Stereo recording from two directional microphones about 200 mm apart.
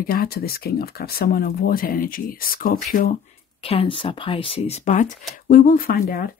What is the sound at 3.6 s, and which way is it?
Speech, 30° left (ahead or behind).